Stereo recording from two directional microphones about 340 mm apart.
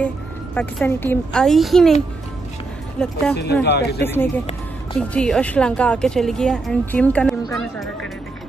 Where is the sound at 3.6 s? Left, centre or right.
Left.